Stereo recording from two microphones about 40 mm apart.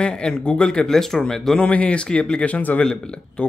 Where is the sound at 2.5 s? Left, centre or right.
Left.